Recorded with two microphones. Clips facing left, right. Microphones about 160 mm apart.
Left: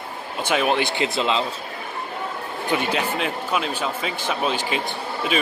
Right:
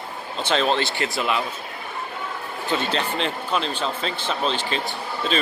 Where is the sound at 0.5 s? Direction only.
10° left (ahead or behind).